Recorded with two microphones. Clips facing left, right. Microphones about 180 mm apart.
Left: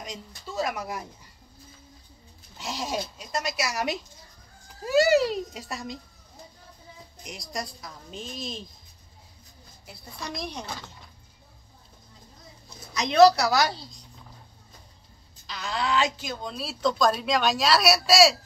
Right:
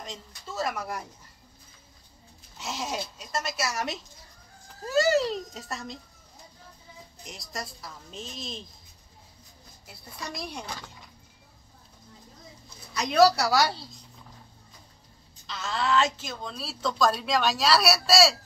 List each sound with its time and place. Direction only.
0.0 s speech: centre (ahead or behind)
2.5 s speech: centre (ahead or behind)
7.2 s speech: centre (ahead or behind)
9.8 s a woman's voice: 5° right (ahead or behind)
10.6 s speech: 5° left (ahead or behind)
12.9 s a woman's voice: 5° right (ahead or behind)
15.4 s speech: centre (ahead or behind)